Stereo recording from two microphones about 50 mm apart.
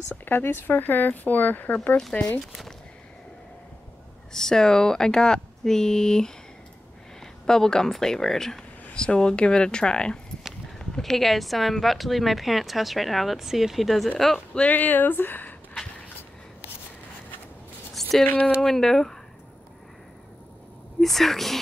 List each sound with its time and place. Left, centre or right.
0.1 s speech: left
4.3 s speech: centre
7.4 s speech: centre
14.7 s speech: left
18.0 s a sound: centre
18.6 s speech: centre
21.0 s speech: centre